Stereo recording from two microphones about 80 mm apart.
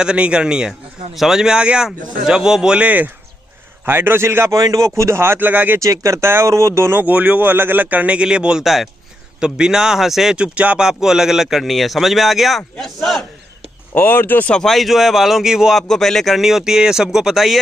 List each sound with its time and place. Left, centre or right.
0.0 s a man's voice: centre; by 4.6 s right
4.6 s speech: right
5.8 s speech: right; by 13.2 s centre
13.9 s speech: left
14.5 s speech: centre
15.9 s speech: centre